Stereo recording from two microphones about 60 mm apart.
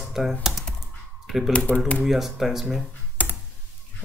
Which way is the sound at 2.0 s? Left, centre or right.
Centre.